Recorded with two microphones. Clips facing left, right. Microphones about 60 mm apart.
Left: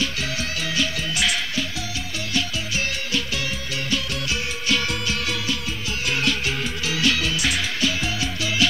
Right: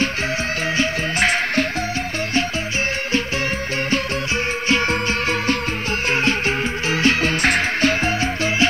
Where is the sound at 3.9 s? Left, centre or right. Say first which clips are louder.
Right 3 dB; right.